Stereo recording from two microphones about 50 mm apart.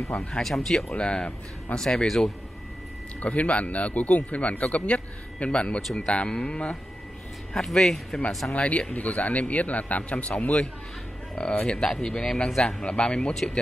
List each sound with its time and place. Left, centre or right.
0.1 s speech: left
0.4 s speech: centre
3.2 s speech: left; by 8.5 s centre
8.5 s speech: left